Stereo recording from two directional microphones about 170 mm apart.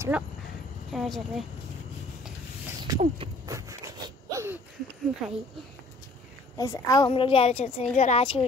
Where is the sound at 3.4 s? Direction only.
20° right (ahead or behind).